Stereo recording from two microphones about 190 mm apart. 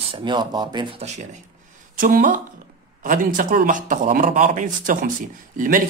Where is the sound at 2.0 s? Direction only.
45° right (ahead or behind).